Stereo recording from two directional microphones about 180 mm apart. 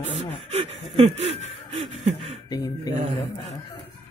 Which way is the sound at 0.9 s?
35° right (ahead or behind).